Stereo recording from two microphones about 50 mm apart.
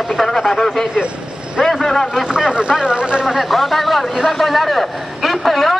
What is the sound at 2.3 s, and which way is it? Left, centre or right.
Vehicle, centre.